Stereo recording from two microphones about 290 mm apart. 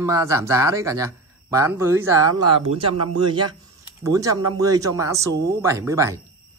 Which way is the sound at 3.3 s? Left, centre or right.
Right.